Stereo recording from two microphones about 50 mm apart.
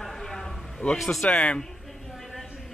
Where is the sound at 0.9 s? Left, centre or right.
Centre.